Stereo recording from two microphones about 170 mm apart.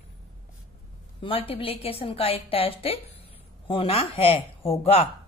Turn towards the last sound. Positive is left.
turn(degrees=35)  # may be behind; listen again after turning